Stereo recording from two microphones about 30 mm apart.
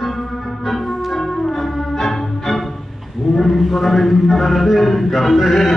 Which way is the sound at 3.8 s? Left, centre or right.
Centre.